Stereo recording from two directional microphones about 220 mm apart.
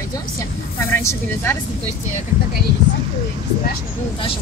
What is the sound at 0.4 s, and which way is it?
Vehicle, 10° left (ahead or behind).